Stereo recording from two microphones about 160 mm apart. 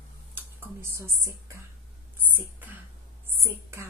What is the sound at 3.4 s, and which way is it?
Speech, 15° right (ahead or behind).